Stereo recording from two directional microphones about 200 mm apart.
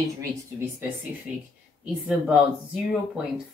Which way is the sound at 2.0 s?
5° right (ahead or behind).